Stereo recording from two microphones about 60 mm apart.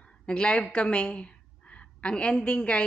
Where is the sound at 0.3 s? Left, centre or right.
Centre.